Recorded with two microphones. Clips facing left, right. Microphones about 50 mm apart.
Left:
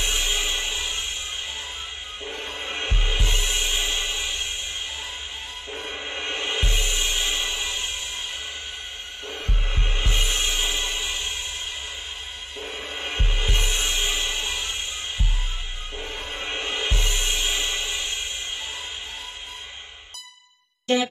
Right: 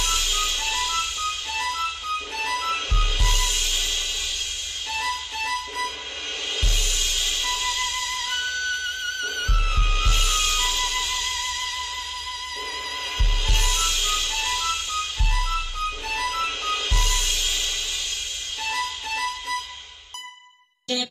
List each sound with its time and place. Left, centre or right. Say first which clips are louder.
0.0 s music: even; left
1.5 s music: right 8 dB; right
2.5 s music: right 5 dB; centre
4.9 s music: right 7 dB; right
6.3 s music: left 2 dB; left
9.4 s music: right 6 dB; right
9.7 s music: right 3 dB; left
13.0 s music: left 1 dB; left
16.3 s music: right 3 dB; centre
18.6 s music: right 6 dB; right
20.9 s music: left 6 dB; left